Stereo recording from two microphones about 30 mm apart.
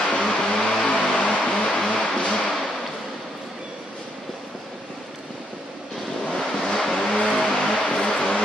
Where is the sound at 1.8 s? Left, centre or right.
Left.